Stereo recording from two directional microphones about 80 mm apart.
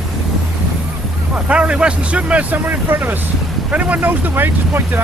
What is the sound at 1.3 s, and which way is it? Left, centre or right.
Vehicle, centre.